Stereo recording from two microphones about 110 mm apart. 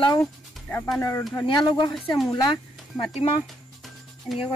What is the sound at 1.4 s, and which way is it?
Speech, 45° left (ahead or behind).